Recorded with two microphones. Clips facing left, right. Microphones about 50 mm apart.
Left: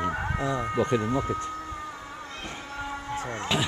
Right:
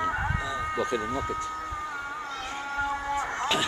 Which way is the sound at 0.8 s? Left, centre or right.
Centre.